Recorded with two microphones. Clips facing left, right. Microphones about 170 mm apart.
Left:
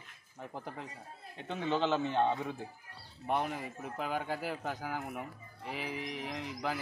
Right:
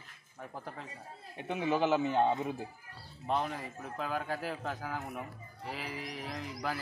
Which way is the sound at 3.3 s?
15° left (ahead or behind).